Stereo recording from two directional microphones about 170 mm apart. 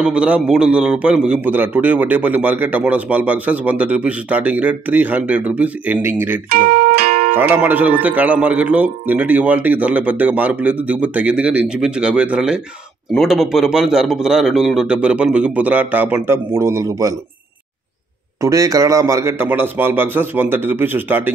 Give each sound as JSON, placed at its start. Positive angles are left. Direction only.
{"t": 0.0, "sound": "a man's voice", "side_deg": -5}
{"t": 6.5, "sound": "music", "side_deg": -65}
{"t": 7.3, "sound": "a man's voice", "side_deg": -10}
{"t": 18.4, "sound": "a man's voice", "side_deg": -20}